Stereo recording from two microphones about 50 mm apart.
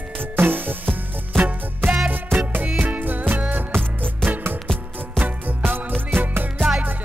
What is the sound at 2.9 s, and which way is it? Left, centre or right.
Music, right.